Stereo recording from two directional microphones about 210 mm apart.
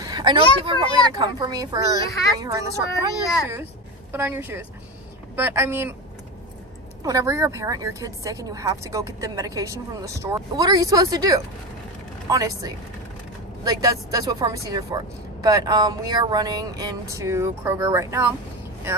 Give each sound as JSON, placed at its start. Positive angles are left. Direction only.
{"t": 0.0, "sound": "a sound", "side_deg": -20}
{"t": 0.7, "sound": "a woman's voice", "side_deg": -20}
{"t": 7.0, "sound": "a woman's voice", "side_deg": -15}